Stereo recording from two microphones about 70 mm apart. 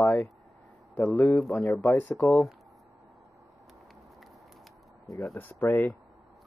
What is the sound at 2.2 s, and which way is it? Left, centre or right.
Speech, centre.